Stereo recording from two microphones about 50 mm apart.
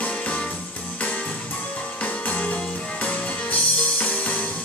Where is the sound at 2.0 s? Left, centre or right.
Left.